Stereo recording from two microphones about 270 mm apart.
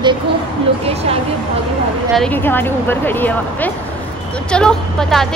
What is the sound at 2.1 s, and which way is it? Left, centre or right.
Speech, centre.